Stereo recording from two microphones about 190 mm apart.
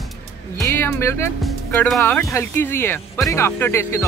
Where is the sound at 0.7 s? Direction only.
10° left (ahead or behind).